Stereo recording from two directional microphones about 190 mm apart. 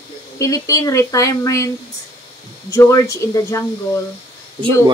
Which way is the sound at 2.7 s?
15° left (ahead or behind).